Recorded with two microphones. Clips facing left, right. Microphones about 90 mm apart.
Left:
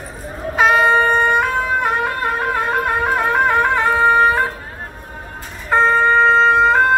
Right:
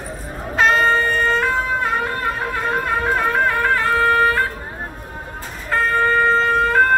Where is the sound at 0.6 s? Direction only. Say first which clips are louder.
Left 3 dB; 10° left (ahead or behind).